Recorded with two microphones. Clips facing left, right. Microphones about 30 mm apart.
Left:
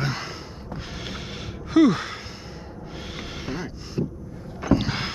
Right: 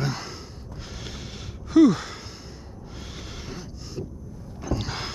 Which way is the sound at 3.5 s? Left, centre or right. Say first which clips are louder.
Left 6 dB; left.